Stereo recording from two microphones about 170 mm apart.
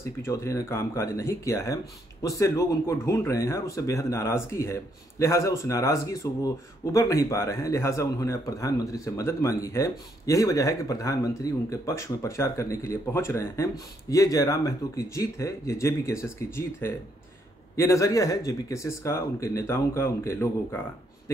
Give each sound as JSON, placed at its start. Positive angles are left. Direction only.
{"t": 0.0, "sound": "speech", "side_deg": 15}